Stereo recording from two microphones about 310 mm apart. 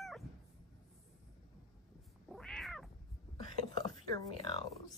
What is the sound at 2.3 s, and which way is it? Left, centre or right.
Cat, centre.